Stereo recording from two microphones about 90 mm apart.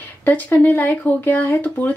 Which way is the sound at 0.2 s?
20° left (ahead or behind).